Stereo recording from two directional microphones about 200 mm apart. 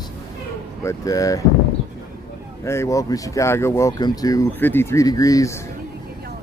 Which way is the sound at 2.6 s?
15° left (ahead or behind).